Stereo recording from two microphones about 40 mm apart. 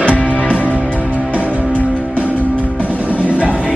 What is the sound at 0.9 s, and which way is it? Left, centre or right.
Music, right.